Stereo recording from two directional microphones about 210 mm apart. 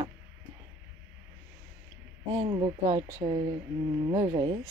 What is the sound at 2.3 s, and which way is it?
Speech, 20° right (ahead or behind).